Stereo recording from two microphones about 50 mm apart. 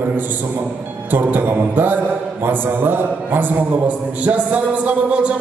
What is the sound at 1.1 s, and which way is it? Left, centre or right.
A man's voice, right.